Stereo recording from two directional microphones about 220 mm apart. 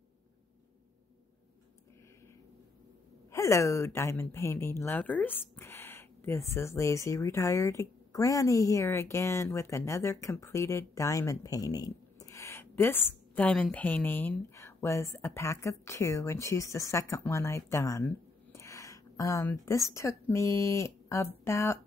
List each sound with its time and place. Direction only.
3.3 s a woman's voice: 15° left (ahead or behind)